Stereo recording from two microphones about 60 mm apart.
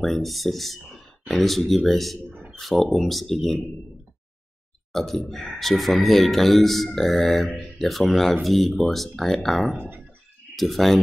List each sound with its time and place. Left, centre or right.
0.0 s speech: centre
4.9 s speech: centre
9.8 s speech: right
10.5 s speech: centre